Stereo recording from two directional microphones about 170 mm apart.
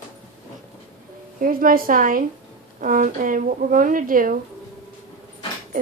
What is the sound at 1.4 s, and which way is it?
A woman's voice, 55° right (ahead or behind).